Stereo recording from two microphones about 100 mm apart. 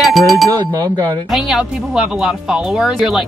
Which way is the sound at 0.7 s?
35° right (ahead or behind).